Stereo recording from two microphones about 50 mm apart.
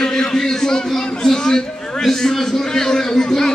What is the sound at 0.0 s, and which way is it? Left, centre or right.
A man's voice, centre.